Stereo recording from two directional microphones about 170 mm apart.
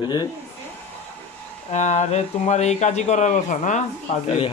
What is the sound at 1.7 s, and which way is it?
Speech, 45° left (ahead or behind).